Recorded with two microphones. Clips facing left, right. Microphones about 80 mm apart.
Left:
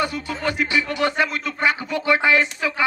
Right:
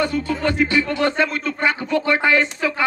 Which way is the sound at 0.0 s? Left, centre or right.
Centre.